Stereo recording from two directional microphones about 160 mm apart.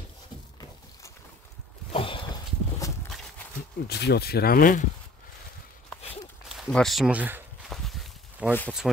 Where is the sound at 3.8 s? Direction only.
90° left; by 4.9 s 60° left (ahead or behind).